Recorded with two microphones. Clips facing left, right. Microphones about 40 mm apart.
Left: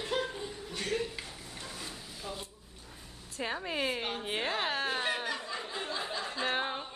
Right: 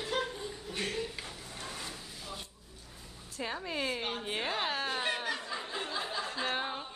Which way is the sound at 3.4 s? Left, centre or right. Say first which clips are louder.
Left 2 dB; centre.